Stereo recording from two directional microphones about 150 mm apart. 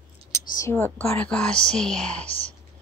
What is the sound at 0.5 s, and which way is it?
A woman's voice, 20° left (ahead or behind).